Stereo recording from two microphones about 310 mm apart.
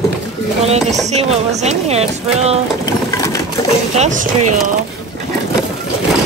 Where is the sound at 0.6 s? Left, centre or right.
Centre.